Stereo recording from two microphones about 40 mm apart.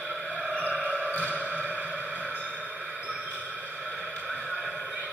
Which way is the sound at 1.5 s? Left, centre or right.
Right.